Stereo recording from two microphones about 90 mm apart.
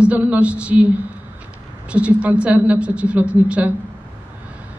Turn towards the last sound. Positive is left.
turn(degrees=-15)  # may be behind; listen again after turning